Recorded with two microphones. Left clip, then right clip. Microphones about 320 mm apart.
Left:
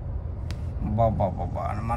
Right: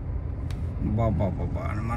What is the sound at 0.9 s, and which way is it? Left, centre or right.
Speech, left.